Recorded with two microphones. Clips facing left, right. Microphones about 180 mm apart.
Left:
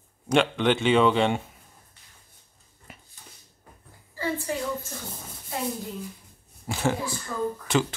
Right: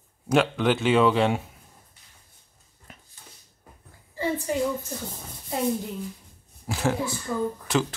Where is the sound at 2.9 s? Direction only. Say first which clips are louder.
Left 1 dB; 5° left (ahead or behind).